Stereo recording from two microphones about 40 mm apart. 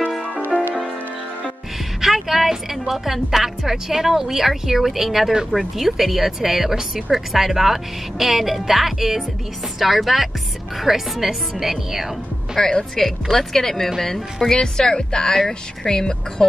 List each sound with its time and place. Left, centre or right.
2.0 s a woman's voice: centre
9.8 s music: centre
10.8 s a woman's voice: centre
12.5 s a woman's voice: centre